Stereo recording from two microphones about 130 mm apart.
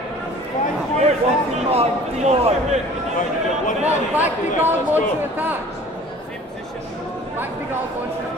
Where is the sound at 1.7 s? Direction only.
50° right (ahead or behind).